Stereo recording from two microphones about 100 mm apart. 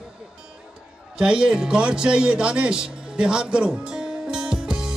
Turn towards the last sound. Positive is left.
turn(degrees=-5)  # may be behind; listen again after turning